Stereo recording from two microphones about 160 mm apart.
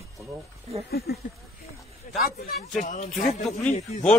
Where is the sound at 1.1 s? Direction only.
90° left.